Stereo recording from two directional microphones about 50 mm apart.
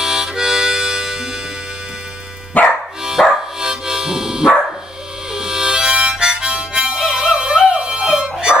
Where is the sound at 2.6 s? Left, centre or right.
Left.